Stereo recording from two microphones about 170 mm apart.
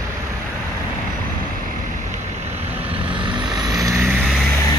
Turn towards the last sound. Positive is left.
turn(degrees=-20)  # may be behind; listen again after turning